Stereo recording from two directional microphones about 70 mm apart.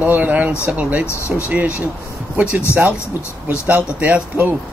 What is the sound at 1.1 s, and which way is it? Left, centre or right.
Speech, left.